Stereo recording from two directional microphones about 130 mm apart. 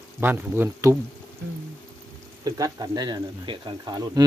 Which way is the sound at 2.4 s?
30° right (ahead or behind).